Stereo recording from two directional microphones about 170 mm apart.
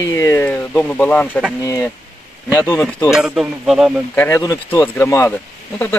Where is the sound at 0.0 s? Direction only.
15° left (ahead or behind).